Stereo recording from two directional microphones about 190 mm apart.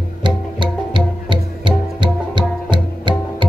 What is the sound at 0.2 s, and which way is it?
Music, 25° right (ahead or behind).